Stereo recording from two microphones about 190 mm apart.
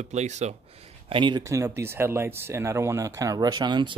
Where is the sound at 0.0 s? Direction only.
35° right (ahead or behind).